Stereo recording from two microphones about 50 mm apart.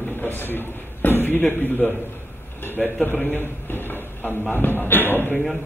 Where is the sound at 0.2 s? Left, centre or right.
Left.